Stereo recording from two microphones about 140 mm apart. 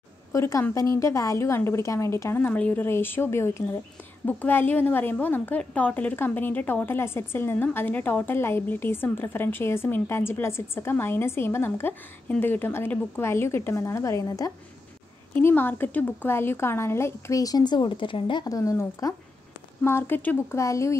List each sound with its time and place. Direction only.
0.3 s a woman's voice: 25° left (ahead or behind)
15.3 s a woman's voice: 15° left (ahead or behind)